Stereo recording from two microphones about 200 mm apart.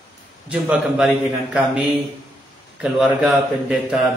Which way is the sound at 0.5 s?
5° right (ahead or behind).